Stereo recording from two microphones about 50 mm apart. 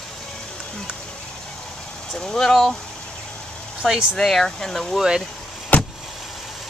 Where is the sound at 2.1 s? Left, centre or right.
Centre.